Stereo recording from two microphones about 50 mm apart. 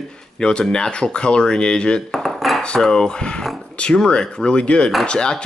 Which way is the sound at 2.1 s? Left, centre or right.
Centre.